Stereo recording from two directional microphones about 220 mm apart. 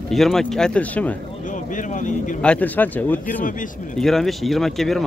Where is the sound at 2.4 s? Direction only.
5° left (ahead or behind).